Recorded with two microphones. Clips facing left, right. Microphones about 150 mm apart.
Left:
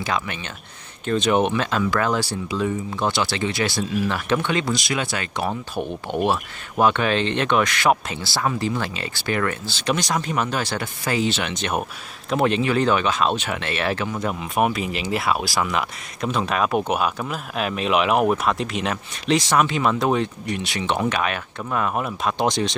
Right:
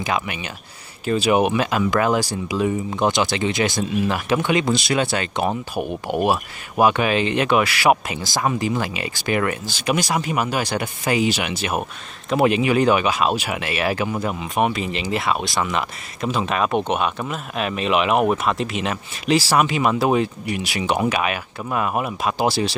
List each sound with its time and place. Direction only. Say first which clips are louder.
0.0 s speech: right 2 dB; 15° right (ahead or behind)
4.7 s speech: right 5 dB; 30° right (ahead or behind)
5.8 s speech: right 1 dB; 10° right (ahead or behind)